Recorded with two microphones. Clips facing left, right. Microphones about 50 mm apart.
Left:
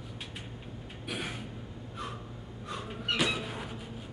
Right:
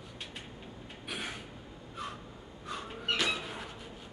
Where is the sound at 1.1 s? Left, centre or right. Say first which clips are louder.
Left 2 dB; centre.